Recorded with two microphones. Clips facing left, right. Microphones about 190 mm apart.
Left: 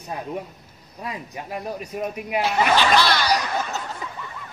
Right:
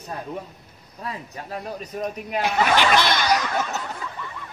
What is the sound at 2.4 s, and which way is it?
Speech, 20° right (ahead or behind).